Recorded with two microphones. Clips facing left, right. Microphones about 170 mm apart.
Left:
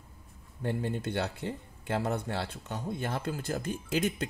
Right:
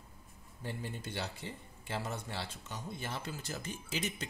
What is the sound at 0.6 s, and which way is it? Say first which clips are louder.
Speech: left 10 dB; 60° left (ahead or behind).